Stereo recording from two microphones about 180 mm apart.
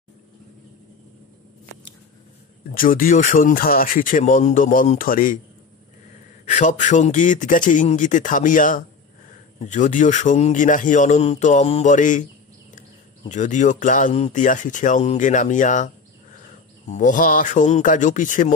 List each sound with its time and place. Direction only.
2.7 s speech: 50° left (ahead or behind)
6.4 s speech: 45° left (ahead or behind)
13.3 s speech: 45° left (ahead or behind)